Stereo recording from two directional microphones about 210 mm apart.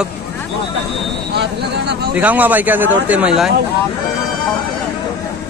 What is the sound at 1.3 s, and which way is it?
Speech, 55° right (ahead or behind).